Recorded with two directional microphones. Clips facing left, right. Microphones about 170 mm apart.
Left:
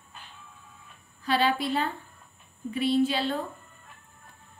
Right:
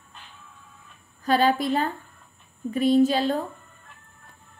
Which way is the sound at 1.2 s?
45° right (ahead or behind).